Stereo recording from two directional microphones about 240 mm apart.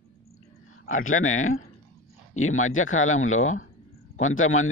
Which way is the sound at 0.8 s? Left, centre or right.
Left.